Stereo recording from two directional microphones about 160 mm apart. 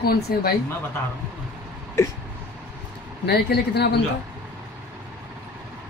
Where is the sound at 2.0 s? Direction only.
15° left (ahead or behind).